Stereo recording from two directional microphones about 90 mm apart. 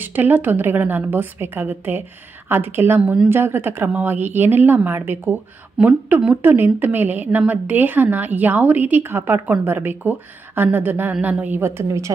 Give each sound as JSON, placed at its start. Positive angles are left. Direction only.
{"t": 0.0, "sound": "a woman's voice", "side_deg": -20}